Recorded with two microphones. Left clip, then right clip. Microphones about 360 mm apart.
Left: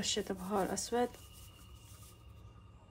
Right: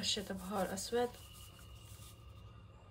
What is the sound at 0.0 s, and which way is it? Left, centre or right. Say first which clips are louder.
Speech: left 2 dB; centre.